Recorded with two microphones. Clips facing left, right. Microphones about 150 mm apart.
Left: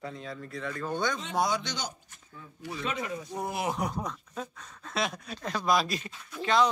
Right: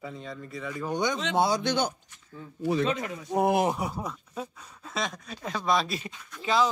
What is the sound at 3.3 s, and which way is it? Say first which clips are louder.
Speech: right 15 dB; 65° right (ahead or behind).